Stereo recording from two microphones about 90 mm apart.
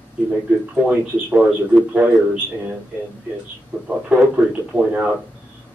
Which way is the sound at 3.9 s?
10° right (ahead or behind).